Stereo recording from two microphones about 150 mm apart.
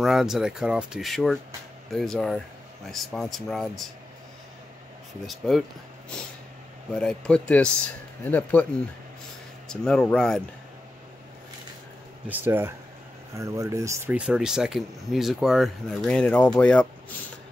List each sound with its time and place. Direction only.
0.0 s speech: centre (ahead or behind)
5.2 s speech: centre (ahead or behind)
6.9 s speech: 5° left (ahead or behind)
9.7 s speech: 5° left (ahead or behind)
12.3 s speech: 15° right (ahead or behind)
14.1 s speech: 5° right (ahead or behind)